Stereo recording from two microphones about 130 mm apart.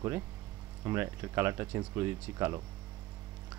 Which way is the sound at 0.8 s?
20° right (ahead or behind).